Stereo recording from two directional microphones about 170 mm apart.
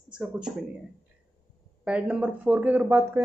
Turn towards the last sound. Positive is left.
turn(degrees=-15)  # may be behind; listen again after turning